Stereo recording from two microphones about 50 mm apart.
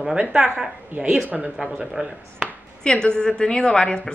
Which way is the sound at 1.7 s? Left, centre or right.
Centre.